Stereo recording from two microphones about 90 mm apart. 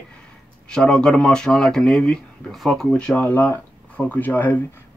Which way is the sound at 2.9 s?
15° left (ahead or behind).